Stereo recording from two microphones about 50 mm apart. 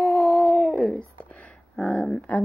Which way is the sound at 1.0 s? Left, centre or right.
Left.